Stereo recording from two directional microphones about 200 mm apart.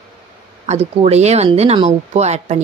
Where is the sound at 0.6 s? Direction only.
35° right (ahead or behind).